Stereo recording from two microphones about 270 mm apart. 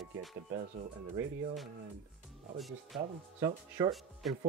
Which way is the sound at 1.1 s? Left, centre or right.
Centre.